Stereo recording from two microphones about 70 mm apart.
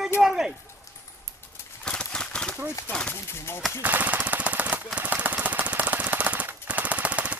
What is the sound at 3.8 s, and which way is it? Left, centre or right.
Machine gun, right.